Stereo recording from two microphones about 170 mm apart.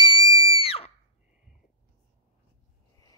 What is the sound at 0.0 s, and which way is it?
Music, 30° left (ahead or behind).